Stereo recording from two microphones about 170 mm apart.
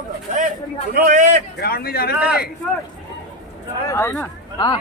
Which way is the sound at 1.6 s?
65° left (ahead or behind).